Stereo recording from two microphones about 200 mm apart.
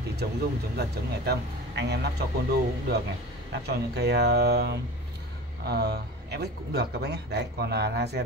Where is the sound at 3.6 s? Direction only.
55° right (ahead or behind).